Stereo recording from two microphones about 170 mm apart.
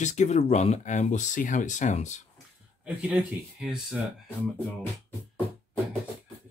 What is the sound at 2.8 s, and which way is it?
Speech, 5° right (ahead or behind).